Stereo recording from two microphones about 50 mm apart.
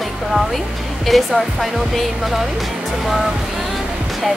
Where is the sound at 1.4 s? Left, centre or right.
Centre.